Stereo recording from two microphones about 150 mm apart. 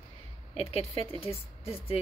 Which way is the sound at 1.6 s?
40° left (ahead or behind).